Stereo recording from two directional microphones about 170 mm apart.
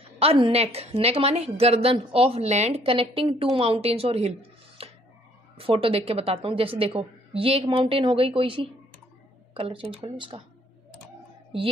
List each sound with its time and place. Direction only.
0.2 s a woman's voice: 35° right (ahead or behind)
4.8 s a sound: 35° right (ahead or behind)
5.6 s a woman's voice: 35° right (ahead or behind)